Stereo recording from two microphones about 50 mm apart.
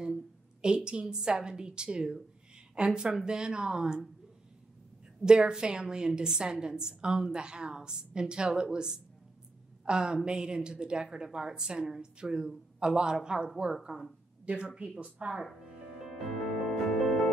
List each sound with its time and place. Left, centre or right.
0.0 s a sound: centre
1.0 s a woman's voice: centre
5.2 s a woman's voice: centre
16.6 s music: centre